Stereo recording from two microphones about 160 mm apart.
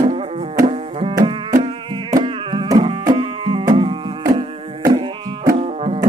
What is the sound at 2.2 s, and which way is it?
Music, 30° right (ahead or behind).